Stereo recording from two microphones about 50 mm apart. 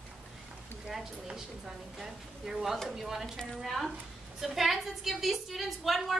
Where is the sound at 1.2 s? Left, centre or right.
Centre.